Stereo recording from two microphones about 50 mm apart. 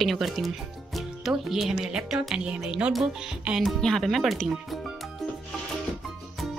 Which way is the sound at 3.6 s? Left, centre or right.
Centre.